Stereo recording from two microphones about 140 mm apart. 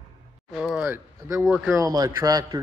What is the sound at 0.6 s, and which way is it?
Speech, centre (ahead or behind).